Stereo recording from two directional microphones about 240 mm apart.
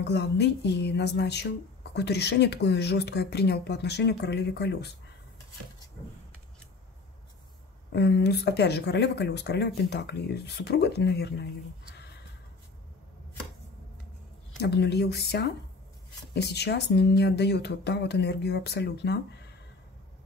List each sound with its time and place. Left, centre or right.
0.0 s speech: left
7.9 s speech: left
14.6 s speech: left